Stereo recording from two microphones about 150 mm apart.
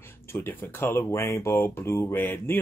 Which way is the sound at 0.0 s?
15° left (ahead or behind).